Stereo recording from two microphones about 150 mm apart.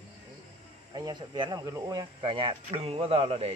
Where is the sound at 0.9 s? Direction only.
30° right (ahead or behind).